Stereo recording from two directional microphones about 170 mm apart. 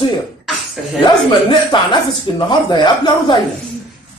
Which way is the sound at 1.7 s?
25° left (ahead or behind).